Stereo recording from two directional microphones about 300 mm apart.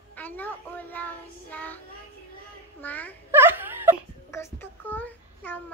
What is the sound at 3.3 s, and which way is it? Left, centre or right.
Wail, centre.